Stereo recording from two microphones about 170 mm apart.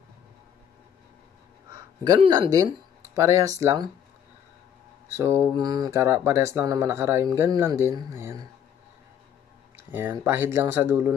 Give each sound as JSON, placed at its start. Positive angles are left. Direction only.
{"t": 2.0, "sound": "speech", "side_deg": -25}
{"t": 5.1, "sound": "speech", "side_deg": -15}
{"t": 9.8, "sound": "speech", "side_deg": -15}